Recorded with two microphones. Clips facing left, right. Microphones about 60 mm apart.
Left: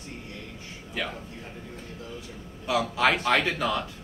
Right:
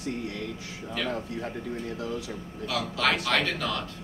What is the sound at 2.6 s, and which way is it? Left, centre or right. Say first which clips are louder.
A man's voice: left 4 dB; centre.